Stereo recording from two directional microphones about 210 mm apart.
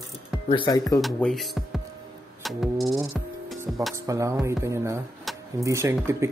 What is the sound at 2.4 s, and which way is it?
Music, centre (ahead or behind).